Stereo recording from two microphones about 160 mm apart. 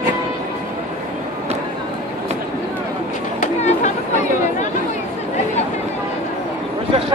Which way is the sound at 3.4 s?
45° left (ahead or behind).